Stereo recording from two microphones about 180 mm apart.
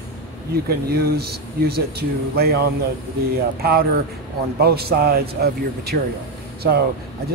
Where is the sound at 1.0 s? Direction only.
60° right (ahead or behind).